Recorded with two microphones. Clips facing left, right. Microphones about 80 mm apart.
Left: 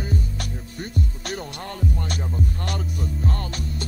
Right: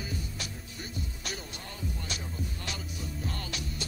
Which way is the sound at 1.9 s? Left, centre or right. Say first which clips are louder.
Left 10 dB; left.